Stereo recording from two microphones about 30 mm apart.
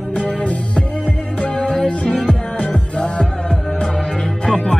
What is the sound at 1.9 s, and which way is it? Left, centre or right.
Music, left.